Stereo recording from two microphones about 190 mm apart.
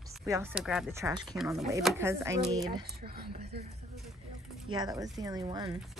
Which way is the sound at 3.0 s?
55° right (ahead or behind).